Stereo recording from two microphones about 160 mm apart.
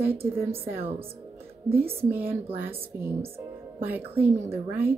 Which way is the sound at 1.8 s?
35° right (ahead or behind).